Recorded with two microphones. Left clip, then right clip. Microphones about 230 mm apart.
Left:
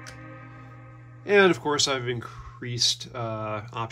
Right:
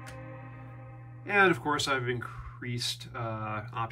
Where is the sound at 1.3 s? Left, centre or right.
Centre.